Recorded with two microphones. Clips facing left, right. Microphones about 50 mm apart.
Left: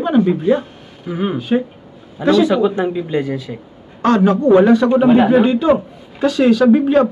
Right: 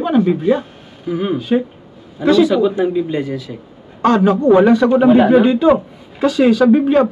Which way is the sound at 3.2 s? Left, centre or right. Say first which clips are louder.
Left 1 dB; left.